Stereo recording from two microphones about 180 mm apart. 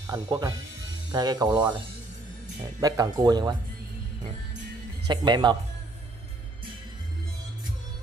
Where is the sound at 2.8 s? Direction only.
20° right (ahead or behind).